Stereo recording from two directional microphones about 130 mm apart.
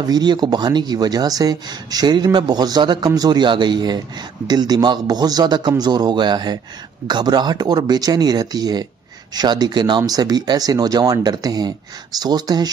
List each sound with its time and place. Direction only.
0.0 s speech: 30° right (ahead or behind)